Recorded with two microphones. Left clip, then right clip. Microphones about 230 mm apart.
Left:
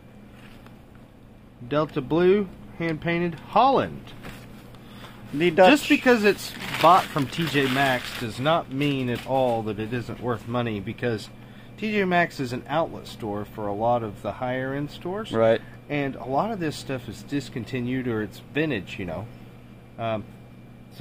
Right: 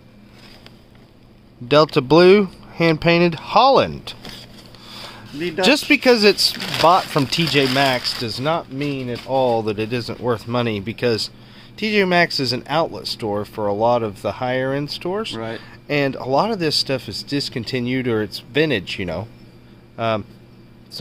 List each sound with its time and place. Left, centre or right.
1.7 s speech: right
5.4 s speech: left
5.7 s speech: right
8.7 s speech: centre
9.5 s speech: right
15.3 s speech: left
15.9 s speech: right